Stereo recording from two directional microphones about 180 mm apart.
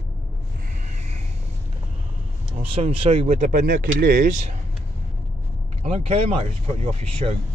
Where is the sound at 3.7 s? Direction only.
55° right (ahead or behind).